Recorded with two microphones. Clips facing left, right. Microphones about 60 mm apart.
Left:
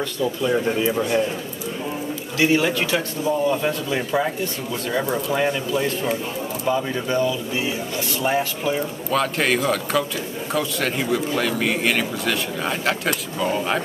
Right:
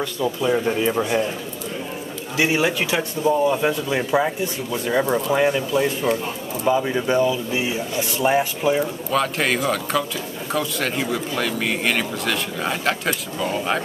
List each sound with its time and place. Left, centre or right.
0.0 s speech: centre
2.3 s speech: centre